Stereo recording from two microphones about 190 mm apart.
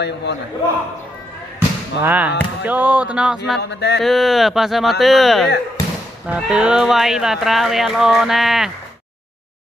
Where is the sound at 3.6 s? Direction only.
60° left (ahead or behind).